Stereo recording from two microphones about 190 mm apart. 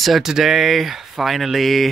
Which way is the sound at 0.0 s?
Centre (ahead or behind).